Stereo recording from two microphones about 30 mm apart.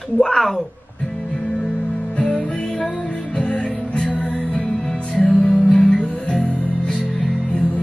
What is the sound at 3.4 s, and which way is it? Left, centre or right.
Music, left.